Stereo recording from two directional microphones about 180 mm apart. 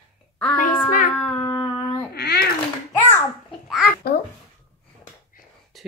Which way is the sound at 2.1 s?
60° left (ahead or behind).